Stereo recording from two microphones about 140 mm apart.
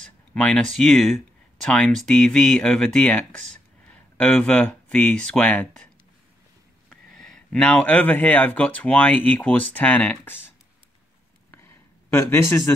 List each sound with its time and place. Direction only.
0.0 s speech: 5° left (ahead or behind)
6.9 s speech: 5° left (ahead or behind)
11.5 s a sound: 20° left (ahead or behind)